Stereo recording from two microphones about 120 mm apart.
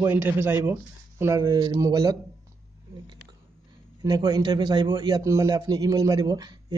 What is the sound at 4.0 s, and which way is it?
A man's voice, 35° right (ahead or behind).